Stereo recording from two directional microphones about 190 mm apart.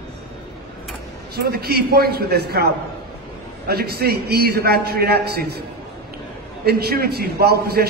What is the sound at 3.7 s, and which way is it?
A man's voice, 55° right (ahead or behind).